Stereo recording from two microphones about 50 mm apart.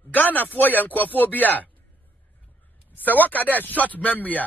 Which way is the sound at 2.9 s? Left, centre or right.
Left.